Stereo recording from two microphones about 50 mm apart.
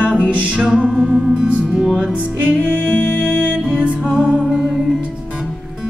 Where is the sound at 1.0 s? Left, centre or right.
Centre.